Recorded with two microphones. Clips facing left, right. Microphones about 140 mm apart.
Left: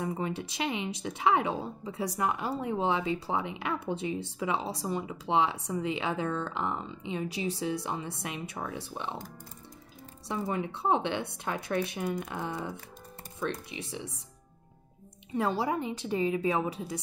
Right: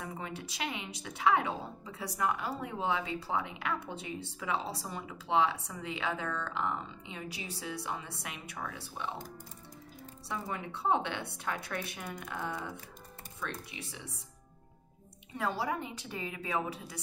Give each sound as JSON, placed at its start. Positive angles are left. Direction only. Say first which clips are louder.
{"t": 0.0, "sound": "a woman's voice", "louder": "left 8 dB", "side_deg": 25}
{"t": 10.2, "sound": "a woman's voice", "louder": "left 6 dB", "side_deg": 25}
{"t": 15.3, "sound": "a woman's voice", "louder": "left 5 dB", "side_deg": 25}